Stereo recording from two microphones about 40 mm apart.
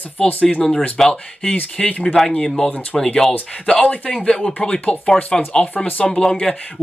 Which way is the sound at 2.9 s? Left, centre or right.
Centre.